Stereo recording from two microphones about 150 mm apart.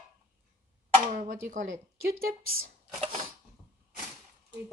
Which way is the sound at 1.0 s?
60° right (ahead or behind).